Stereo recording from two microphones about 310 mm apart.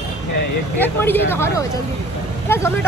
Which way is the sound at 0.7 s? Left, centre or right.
Centre.